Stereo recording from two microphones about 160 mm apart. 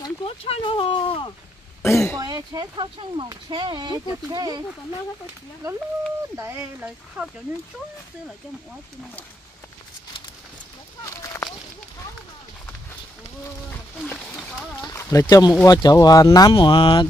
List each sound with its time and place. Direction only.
0.0 s speech: 35° left (ahead or behind)
1.8 s speech: 15° left (ahead or behind)
2.1 s speech: 25° right (ahead or behind)
6.3 s speech: 15° right (ahead or behind)
13.7 s a sound: 10° left (ahead or behind)
14.8 s a sound: 20° left (ahead or behind)
15.6 s speech: 25° left (ahead or behind)